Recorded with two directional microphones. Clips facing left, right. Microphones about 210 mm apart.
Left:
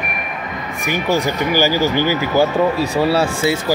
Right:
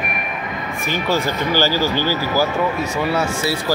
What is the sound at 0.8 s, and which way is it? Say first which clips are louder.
Speech: left 3 dB; 15° left (ahead or behind).